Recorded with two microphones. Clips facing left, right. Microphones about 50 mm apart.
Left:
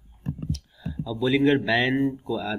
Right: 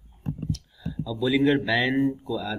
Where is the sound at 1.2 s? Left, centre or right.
Centre.